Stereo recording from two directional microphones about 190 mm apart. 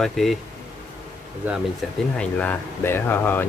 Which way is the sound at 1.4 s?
10° right (ahead or behind).